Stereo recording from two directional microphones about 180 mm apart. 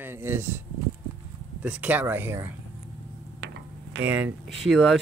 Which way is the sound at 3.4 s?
70° right (ahead or behind).